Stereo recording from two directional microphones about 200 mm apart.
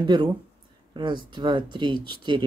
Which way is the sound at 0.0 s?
25° right (ahead or behind).